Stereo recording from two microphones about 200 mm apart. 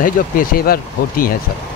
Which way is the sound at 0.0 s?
45° left (ahead or behind).